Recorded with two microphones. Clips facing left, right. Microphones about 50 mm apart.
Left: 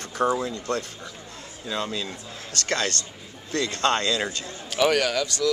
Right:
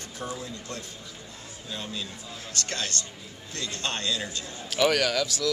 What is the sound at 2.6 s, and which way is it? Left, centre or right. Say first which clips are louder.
Speech: left 7 dB; left.